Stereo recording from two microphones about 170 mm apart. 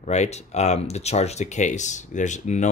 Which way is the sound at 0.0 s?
40° left (ahead or behind).